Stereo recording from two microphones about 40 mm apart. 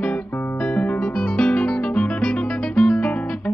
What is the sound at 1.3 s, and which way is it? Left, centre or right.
Music, left.